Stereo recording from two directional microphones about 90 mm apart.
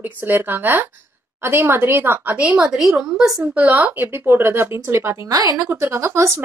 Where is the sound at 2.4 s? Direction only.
15° right (ahead or behind).